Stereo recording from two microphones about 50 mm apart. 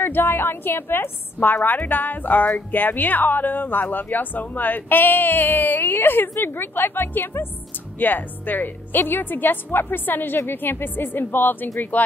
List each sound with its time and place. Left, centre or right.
0.0 s a woman's voice: left
11.9 s a woman's voice: left